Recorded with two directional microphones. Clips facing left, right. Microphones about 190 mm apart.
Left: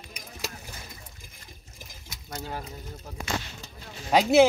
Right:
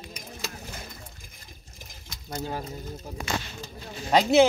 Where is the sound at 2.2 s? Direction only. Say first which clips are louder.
Right 4 dB; 25° right (ahead or behind).